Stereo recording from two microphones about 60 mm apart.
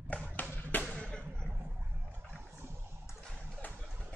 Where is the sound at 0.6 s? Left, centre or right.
Left.